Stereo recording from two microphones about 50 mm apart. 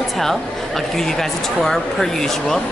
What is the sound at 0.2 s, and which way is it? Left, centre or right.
A woman's voice, centre.